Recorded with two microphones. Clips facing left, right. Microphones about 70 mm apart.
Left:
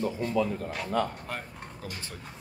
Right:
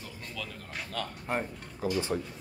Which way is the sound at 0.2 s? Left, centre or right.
Left.